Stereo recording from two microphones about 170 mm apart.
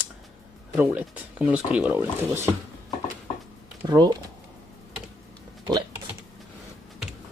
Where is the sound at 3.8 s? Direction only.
25° right (ahead or behind).